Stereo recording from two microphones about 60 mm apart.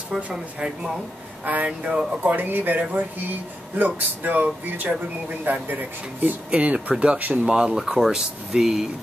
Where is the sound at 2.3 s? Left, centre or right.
Right.